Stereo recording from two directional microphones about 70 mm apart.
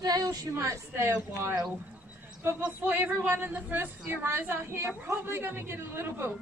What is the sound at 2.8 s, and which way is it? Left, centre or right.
A man's voice, right.